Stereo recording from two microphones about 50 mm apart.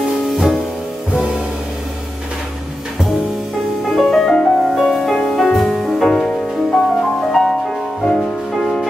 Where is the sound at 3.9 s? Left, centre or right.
Centre.